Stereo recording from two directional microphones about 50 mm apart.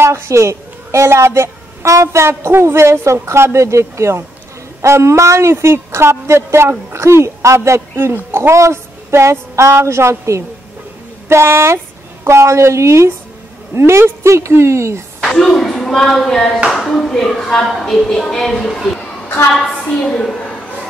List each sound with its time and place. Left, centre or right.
0.0 s a woman's voice: right
13.7 s a woman's voice: right
15.2 s a woman's voice: centre
18.9 s a sound: centre